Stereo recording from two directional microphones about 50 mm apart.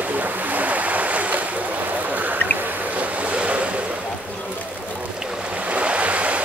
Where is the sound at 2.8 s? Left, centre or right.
Right.